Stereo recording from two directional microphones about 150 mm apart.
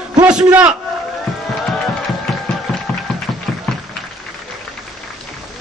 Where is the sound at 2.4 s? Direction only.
Centre (ahead or behind).